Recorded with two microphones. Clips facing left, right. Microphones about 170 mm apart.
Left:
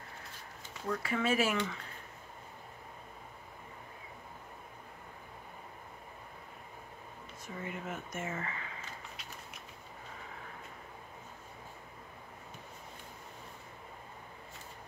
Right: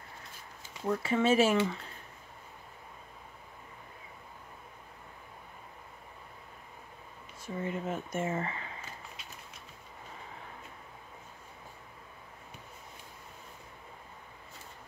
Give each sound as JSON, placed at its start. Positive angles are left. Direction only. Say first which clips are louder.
{"t": 0.8, "sound": "speech", "louder": "right 5 dB", "side_deg": -25}
{"t": 7.4, "sound": "speech", "louder": "right 6 dB", "side_deg": -30}